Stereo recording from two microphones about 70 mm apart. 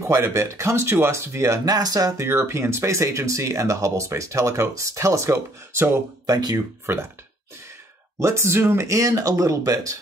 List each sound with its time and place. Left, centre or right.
0.0 s speech: right
1.7 s speech: right
2.1 s speech: right
6.2 s speech: right
6.9 s speech: right
8.2 s speech: right
8.8 s speech: right